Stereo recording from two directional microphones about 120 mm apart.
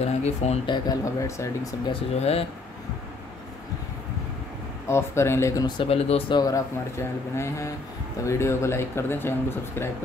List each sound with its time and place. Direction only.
0.0 s speech: 65° left (ahead or behind)
0.9 s speech: 30° left (ahead or behind)
2.1 s speech: 60° left (ahead or behind)
4.8 s speech: 20° left (ahead or behind)
5.8 s speech: 55° left (ahead or behind)
6.3 s speech: 30° left (ahead or behind)